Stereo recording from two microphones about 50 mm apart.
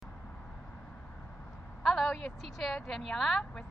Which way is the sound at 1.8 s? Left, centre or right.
Centre.